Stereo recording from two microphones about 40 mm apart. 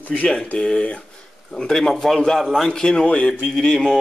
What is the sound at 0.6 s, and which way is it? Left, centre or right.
A man's voice, centre.